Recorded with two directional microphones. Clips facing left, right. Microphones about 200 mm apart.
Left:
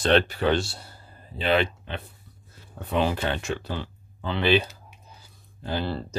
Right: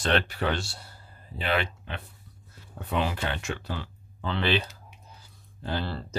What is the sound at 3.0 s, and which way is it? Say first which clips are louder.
Speech: left 5 dB; 30° left (ahead or behind).